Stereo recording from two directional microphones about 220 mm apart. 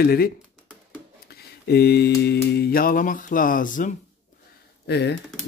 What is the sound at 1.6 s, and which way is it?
Mantra, 45° left (ahead or behind).